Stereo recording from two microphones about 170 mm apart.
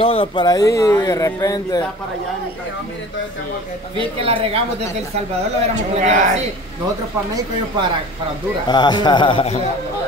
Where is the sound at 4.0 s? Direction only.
35° right (ahead or behind).